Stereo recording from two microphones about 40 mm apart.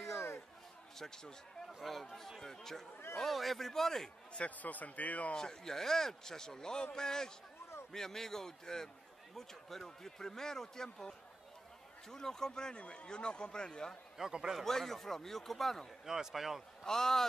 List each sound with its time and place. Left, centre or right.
0.9 s a man's voice: centre
3.2 s a man's voice: centre
4.5 s speech: left
5.3 s a man's voice: centre
12.7 s speech: left
14.2 s speech: centre
14.6 s a man's voice: centre
16.1 s speech: centre
16.8 s a man's voice: centre